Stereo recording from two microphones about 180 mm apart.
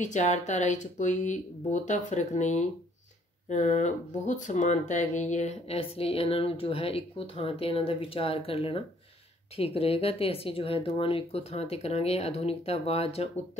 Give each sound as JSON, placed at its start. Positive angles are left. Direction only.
{"t": 0.0, "sound": "speech", "side_deg": 40}